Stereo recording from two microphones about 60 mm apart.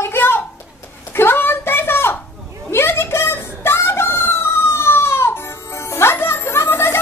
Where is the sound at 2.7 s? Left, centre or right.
Left.